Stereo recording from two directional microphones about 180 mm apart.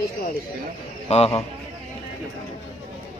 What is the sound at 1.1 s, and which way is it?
Speech, 35° left (ahead or behind).